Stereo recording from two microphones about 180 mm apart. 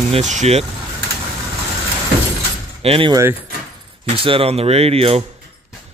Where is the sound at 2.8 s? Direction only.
30° right (ahead or behind).